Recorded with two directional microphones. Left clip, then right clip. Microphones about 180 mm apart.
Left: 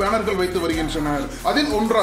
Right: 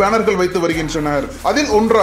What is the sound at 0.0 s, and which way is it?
Speech, 35° right (ahead or behind).